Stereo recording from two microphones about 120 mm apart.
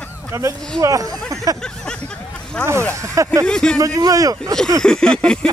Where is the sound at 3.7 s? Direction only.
30° right (ahead or behind).